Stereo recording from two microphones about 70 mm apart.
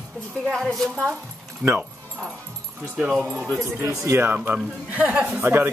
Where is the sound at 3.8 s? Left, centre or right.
Right.